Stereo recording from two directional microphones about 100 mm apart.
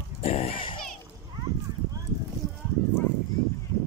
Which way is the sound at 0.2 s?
80° left.